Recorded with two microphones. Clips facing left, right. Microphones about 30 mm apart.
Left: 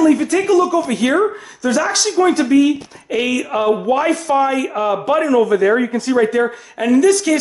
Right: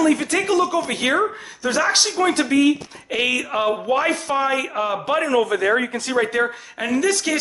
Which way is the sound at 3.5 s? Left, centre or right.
Centre.